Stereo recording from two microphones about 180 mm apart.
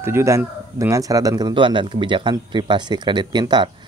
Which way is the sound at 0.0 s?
15° right (ahead or behind).